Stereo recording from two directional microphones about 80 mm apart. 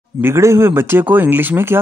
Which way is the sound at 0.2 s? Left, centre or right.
Right.